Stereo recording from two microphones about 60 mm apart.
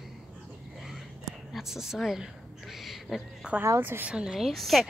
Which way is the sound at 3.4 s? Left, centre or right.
Centre.